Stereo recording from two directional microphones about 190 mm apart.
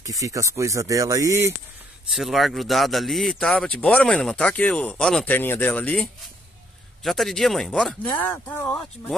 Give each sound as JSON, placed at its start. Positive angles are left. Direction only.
{"t": 0.0, "sound": "speech", "side_deg": -15}
{"t": 2.1, "sound": "speech", "side_deg": 0}